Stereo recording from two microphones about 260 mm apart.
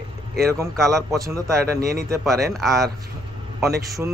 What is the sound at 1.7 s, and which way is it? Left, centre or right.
Speech, right.